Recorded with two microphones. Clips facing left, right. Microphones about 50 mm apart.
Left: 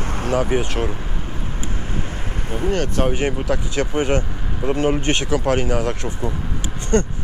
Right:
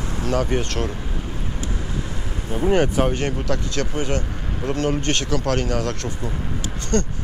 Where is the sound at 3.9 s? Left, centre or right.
Left.